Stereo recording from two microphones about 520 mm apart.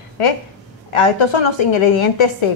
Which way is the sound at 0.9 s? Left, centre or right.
Left.